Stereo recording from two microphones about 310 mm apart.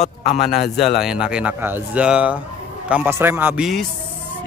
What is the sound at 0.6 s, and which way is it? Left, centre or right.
Speech, centre.